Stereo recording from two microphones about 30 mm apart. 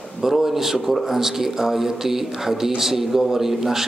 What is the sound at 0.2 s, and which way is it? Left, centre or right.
A man's voice, centre.